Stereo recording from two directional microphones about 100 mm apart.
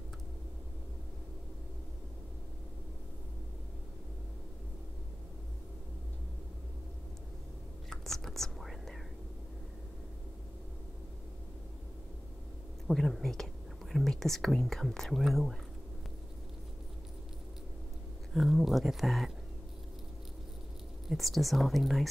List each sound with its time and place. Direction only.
7.9 s whispering: 5° left (ahead or behind)
12.8 s speech: centre (ahead or behind)
18.3 s speech: centre (ahead or behind)
21.1 s speech: centre (ahead or behind)